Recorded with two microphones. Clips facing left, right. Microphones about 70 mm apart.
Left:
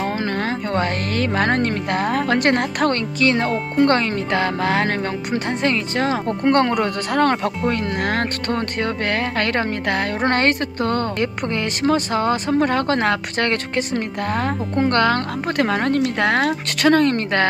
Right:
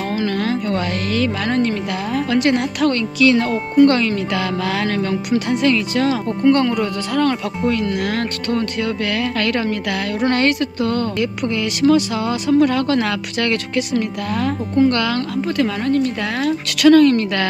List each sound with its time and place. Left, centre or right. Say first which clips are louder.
0.1 s speech: right 3 dB; left
6.4 s speech: right 2 dB; left
16.8 s speech: right 5 dB; left